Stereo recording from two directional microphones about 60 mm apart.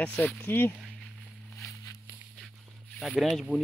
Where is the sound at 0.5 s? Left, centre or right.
Left.